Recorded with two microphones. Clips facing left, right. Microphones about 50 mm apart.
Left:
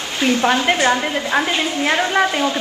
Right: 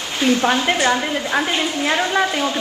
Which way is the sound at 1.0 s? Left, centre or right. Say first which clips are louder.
Left 1 dB; centre.